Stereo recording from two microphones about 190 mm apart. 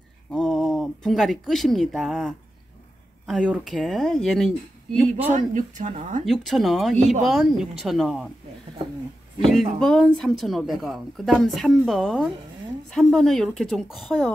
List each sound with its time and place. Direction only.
0.3 s speech: centre (ahead or behind)
5.3 s speech: 40° right (ahead or behind)
6.2 s speech: centre (ahead or behind)
9.4 s speech: centre (ahead or behind)